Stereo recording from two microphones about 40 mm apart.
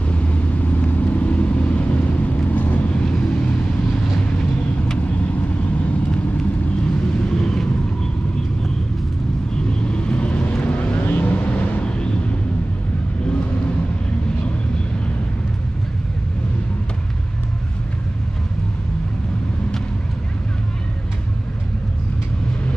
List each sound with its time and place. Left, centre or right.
0.1 s vehicle: left
2.9 s vehicle: left
4.9 s vehicle: left
6.1 s vehicle: left
7.2 s a sound: centre
9.7 s vehicle: left
11.8 s a sound: left